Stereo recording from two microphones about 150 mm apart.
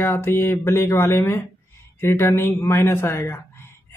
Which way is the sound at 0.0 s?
15° left (ahead or behind).